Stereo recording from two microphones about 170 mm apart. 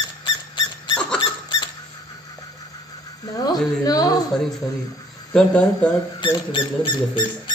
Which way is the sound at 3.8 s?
20° left (ahead or behind).